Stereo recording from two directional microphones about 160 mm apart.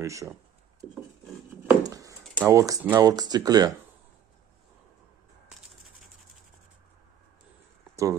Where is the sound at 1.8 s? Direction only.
20° right (ahead or behind).